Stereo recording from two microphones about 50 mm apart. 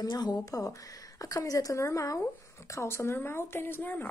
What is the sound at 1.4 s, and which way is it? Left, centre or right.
Speech, left.